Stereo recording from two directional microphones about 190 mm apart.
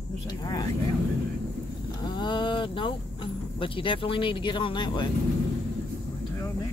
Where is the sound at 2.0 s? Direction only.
25° left (ahead or behind).